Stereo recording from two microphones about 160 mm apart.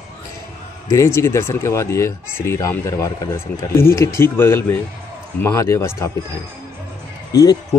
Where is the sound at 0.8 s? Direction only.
20° left (ahead or behind).